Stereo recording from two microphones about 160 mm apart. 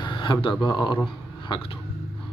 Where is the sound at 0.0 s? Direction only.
30° left (ahead or behind).